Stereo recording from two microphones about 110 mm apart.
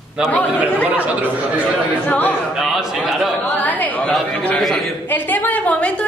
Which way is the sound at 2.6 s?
5° right (ahead or behind).